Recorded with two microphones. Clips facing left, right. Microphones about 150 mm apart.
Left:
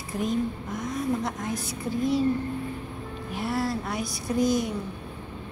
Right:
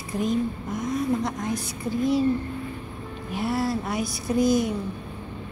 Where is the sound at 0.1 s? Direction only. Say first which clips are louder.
Right 2 dB; centre (ahead or behind).